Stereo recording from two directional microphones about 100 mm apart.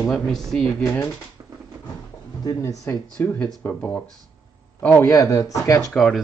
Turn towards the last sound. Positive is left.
turn(degrees=0)  # may be behind; listen again after turning